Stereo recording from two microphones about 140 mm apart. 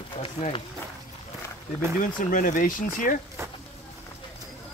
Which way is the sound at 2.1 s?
75° left (ahead or behind).